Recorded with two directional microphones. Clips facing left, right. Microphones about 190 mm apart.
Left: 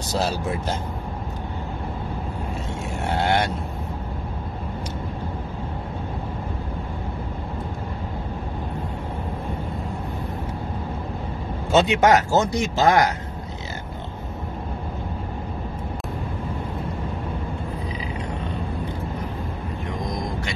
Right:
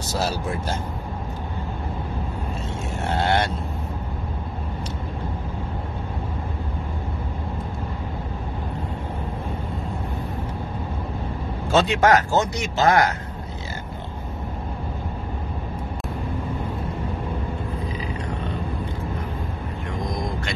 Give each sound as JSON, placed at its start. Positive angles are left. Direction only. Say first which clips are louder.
{"t": 3.1, "sound": "vehicle", "louder": "even", "side_deg": 15}
{"t": 11.7, "sound": "speech", "louder": "left 1 dB", "side_deg": 20}